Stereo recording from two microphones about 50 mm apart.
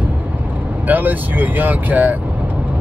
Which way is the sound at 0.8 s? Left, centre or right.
Right.